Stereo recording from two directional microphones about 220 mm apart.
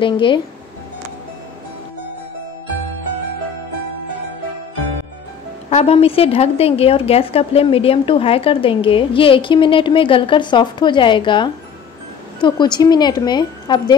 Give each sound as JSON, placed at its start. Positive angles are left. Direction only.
{"t": 0.0, "sound": "a woman's voice", "side_deg": 20}
{"t": 5.7, "sound": "a woman's voice", "side_deg": 30}